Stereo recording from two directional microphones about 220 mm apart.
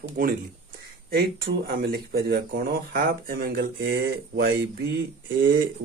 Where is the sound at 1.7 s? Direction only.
45° right (ahead or behind).